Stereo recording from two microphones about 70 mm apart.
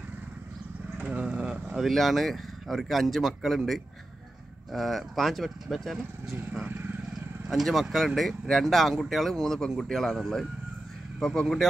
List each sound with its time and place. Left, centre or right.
0.9 s a sound: centre
1.8 s speech: centre
6.6 s speech: right
7.4 s speech: centre